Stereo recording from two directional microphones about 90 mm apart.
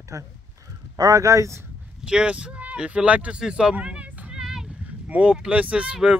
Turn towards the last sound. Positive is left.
turn(degrees=-10)  # may be behind; listen again after turning